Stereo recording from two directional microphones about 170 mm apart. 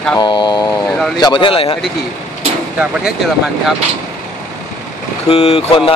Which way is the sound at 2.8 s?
5° right (ahead or behind).